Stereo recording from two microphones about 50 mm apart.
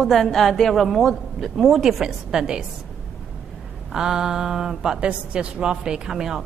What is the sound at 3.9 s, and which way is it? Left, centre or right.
A woman's voice, centre.